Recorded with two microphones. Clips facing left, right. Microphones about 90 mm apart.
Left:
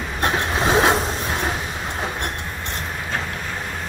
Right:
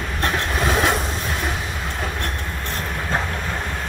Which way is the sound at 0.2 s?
30° left (ahead or behind).